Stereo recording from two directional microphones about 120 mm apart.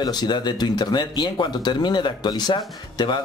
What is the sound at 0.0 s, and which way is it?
Speech, 35° left (ahead or behind).